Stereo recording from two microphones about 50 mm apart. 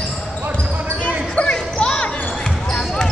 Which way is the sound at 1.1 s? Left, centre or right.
Left.